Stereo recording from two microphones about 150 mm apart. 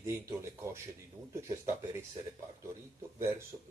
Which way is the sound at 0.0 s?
20° right (ahead or behind).